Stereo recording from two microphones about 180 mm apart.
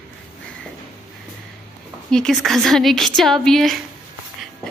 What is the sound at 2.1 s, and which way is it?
A woman's voice, centre (ahead or behind).